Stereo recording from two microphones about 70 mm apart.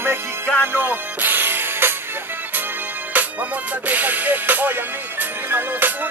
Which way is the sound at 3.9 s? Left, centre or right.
Right.